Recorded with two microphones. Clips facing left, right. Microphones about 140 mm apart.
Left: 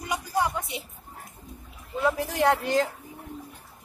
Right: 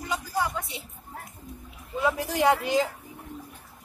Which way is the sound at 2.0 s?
Centre (ahead or behind).